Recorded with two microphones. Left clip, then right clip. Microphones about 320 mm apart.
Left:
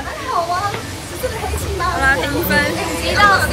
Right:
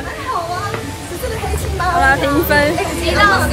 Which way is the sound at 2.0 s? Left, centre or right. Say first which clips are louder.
Right 2 dB; centre.